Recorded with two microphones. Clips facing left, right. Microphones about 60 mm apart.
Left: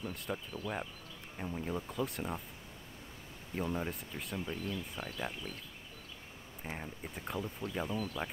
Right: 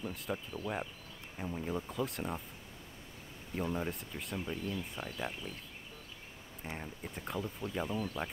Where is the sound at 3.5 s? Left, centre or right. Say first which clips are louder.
Even; centre.